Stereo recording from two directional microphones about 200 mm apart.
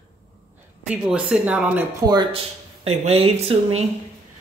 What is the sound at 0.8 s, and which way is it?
Speech, 5° right (ahead or behind).